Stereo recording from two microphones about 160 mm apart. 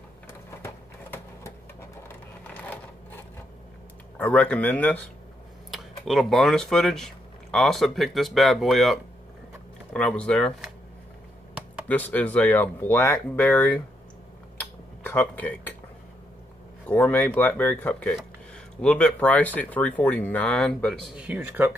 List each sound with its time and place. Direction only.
1.1 s sewing machine: 15° left (ahead or behind)
2.4 s a sound: 10° left (ahead or behind)
4.2 s speech: 10° left (ahead or behind)
11.9 s speech: 10° left (ahead or behind)
15.0 s speech: 10° left (ahead or behind)
16.8 s speech: 10° left (ahead or behind); by 21.7 s 10° right (ahead or behind)